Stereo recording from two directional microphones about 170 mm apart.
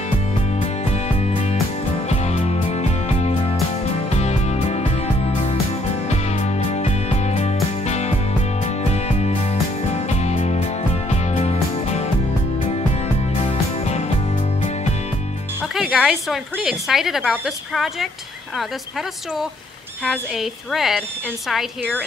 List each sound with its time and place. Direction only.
1.2 s music: 40° left (ahead or behind)
13.5 s music: 40° left (ahead or behind)
15.7 s music: centre (ahead or behind)
16.5 s a woman's voice: centre (ahead or behind)
20.1 s a woman's voice: centre (ahead or behind)